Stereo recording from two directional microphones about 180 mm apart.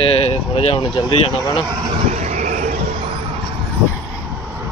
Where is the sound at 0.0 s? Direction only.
35° left (ahead or behind).